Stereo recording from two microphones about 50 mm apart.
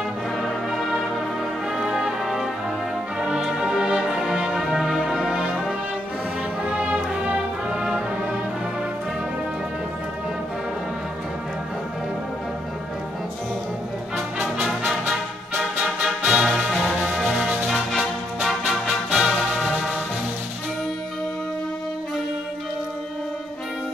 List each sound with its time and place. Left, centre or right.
0.4 s music: centre
1.7 s brass instrument: centre
3.2 s music: centre
6.8 s music: right
7.7 s music: centre
14.9 s music: centre